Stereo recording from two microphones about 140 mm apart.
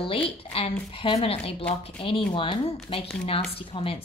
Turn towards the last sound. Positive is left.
turn(degrees=40)  # may be behind; listen again after turning